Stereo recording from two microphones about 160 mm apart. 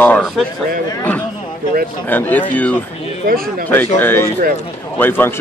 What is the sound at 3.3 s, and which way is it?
Speech, 60° right (ahead or behind).